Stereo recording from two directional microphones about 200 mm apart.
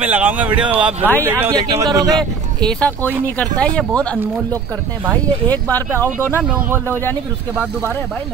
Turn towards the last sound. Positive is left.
turn(degrees=-5)  # may be behind; listen again after turning